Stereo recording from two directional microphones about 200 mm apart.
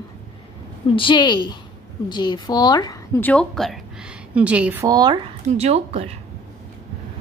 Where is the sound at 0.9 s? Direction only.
25° left (ahead or behind); by 6.1 s 35° right (ahead or behind).